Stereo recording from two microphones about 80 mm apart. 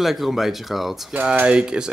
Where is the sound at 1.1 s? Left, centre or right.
Centre.